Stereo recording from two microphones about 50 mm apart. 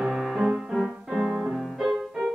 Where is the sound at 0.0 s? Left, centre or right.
Centre.